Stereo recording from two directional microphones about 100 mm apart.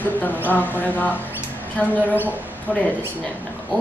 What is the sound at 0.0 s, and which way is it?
Speech, 15° left (ahead or behind).